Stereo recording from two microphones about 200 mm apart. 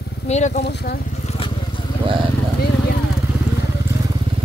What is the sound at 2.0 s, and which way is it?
Speech, 25° right (ahead or behind).